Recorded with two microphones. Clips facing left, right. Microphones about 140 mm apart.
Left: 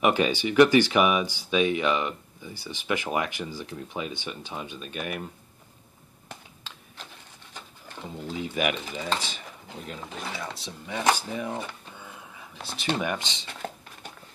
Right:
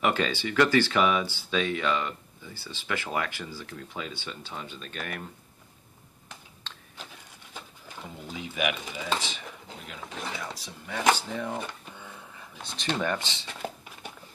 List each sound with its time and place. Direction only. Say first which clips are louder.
0.0 s speech: left 4 dB; 15° left (ahead or behind)
6.7 s a sound: even; 10° left (ahead or behind)
8.4 s speech: left 3 dB; 40° left (ahead or behind)
10.0 s speech: right 1 dB; centre (ahead or behind)
10.6 s speech: even; 15° left (ahead or behind)
11.5 s a sound: even; 5° left (ahead or behind)
12.7 s speech: left 1 dB; 10° left (ahead or behind)